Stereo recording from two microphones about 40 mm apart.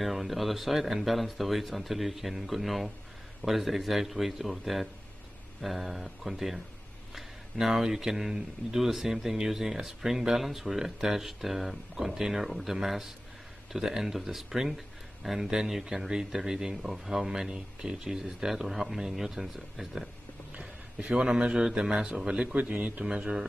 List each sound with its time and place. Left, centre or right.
0.0 s speech: centre
7.5 s speech: centre
21.0 s speech: centre
22.5 s speech: right
23.0 s speech: right